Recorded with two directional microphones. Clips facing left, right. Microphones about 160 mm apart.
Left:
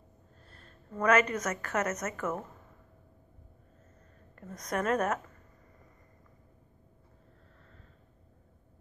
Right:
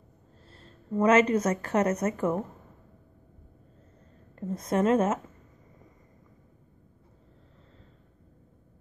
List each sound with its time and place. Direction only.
0.5 s a woman's voice: 30° right (ahead or behind)
4.4 s a woman's voice: 25° right (ahead or behind)